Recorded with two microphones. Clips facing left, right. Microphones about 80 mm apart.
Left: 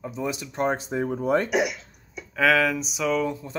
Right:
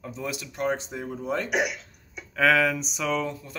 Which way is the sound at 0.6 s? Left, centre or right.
Left.